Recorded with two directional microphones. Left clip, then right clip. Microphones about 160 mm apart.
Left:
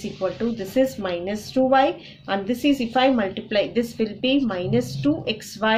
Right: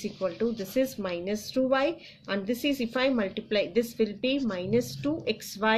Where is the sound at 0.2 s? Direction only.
35° right (ahead or behind).